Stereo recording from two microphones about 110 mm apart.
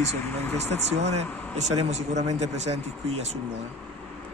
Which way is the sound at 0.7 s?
80° right.